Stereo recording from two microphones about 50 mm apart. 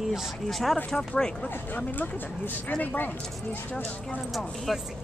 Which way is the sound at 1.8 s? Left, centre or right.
Left.